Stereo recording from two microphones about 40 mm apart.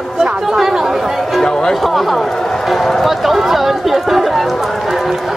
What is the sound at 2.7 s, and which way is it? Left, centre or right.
Speech, centre.